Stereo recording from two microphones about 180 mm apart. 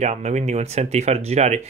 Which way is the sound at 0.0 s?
40° right (ahead or behind).